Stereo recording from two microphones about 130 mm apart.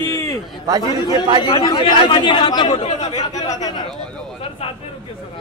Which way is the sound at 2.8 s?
60° left (ahead or behind).